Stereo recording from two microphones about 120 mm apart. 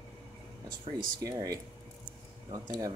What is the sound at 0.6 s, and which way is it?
Speech, 35° right (ahead or behind).